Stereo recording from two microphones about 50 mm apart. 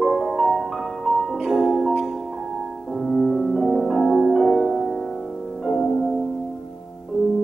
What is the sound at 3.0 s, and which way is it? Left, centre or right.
Music, centre.